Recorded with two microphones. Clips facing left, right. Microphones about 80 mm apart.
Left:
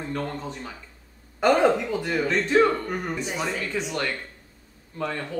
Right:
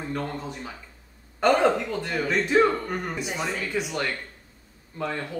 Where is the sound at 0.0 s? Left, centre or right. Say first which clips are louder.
Left 1 dB; centre.